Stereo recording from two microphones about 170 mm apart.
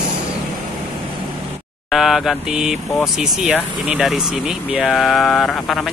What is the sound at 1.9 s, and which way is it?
Speech, centre (ahead or behind).